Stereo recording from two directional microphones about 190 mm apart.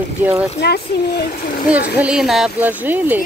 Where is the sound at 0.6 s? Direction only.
55° left (ahead or behind).